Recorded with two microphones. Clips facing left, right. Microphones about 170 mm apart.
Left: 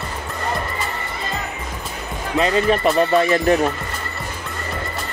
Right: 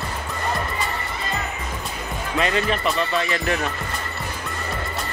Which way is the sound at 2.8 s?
50° left (ahead or behind).